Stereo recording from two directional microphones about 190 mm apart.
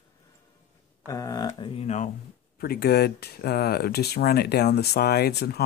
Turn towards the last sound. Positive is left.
turn(degrees=55)  # may be behind; listen again after turning